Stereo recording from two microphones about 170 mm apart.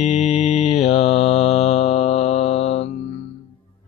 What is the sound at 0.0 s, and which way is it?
Mantra, 40° left (ahead or behind).